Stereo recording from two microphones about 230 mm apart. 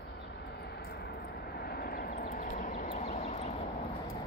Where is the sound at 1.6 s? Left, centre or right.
Left.